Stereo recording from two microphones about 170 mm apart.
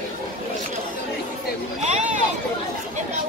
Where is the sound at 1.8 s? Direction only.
40° right (ahead or behind).